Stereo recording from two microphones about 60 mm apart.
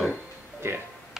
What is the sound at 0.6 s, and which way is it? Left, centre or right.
Speech, right.